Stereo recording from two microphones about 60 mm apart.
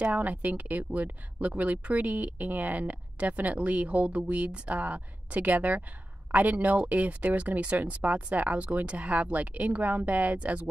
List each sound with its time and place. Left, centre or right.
0.0 s speech: right